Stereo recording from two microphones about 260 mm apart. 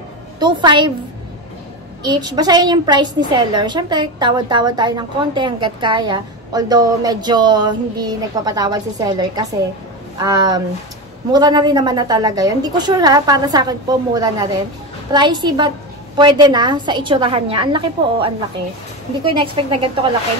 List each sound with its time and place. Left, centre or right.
0.4 s a woman's voice: centre
2.0 s a woman's voice: centre
19.3 s a woman's voice: centre